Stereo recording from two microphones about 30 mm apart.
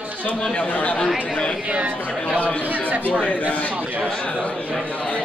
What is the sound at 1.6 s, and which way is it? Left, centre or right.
Speech, right.